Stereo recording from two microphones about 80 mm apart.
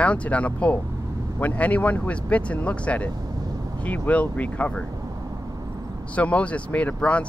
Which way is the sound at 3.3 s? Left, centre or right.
Right.